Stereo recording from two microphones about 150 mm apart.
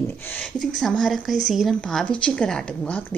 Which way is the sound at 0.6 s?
Centre (ahead or behind).